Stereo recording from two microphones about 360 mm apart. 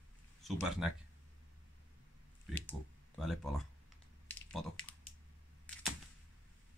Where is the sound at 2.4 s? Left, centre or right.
Centre.